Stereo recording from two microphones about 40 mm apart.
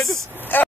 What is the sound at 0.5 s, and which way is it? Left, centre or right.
Speech, left.